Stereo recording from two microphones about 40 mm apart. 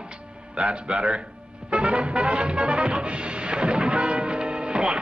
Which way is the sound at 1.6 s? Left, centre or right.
Right.